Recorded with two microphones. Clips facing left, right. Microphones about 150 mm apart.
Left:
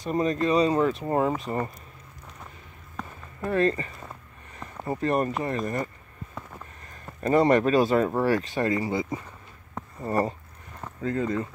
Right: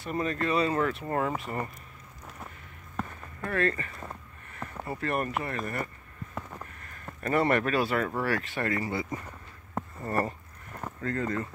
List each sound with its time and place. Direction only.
0.1 s speech: 25° left (ahead or behind)
3.0 s a sound: 5° right (ahead or behind)
3.3 s speech: 25° left (ahead or behind)
7.2 s speech: 20° left (ahead or behind)
7.7 s speech: 30° left (ahead or behind)